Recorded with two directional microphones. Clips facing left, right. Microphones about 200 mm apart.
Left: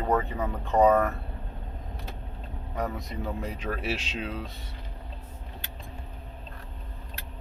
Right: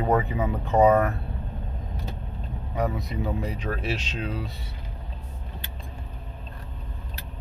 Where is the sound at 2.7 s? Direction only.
5° right (ahead or behind).